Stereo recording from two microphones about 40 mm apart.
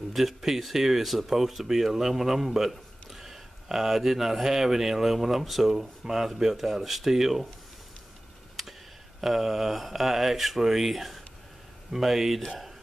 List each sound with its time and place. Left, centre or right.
0.1 s speech: centre
9.2 s speech: centre